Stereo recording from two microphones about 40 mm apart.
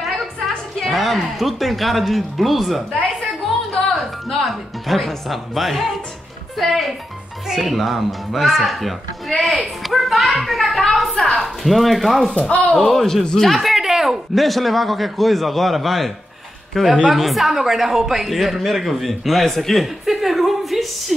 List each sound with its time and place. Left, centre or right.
0.8 s speech: centre
4.5 s speech: centre
12.4 s speech: left
12.7 s speech: centre
13.7 s a sound: centre
14.3 s speech: centre